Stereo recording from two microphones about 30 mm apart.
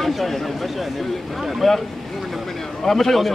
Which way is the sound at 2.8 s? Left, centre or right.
Centre.